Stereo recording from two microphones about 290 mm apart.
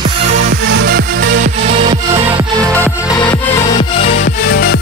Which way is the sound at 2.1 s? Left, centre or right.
Centre.